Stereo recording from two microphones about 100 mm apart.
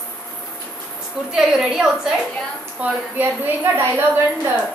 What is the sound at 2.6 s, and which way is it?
A woman's voice, 15° right (ahead or behind).